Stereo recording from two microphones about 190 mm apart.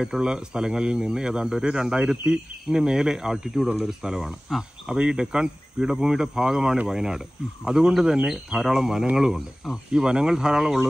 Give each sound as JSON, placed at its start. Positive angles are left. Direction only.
{"t": 0.0, "sound": "speech", "side_deg": -5}